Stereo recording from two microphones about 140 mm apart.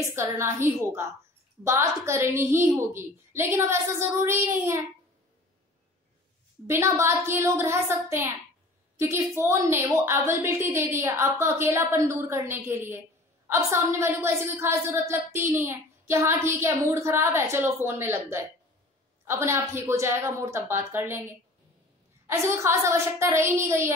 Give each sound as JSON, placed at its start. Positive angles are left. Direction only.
{"t": 0.1, "sound": "a woman's voice", "side_deg": -20}
{"t": 6.7, "sound": "a woman's voice", "side_deg": -20}
{"t": 22.2, "sound": "a woman's voice", "side_deg": -20}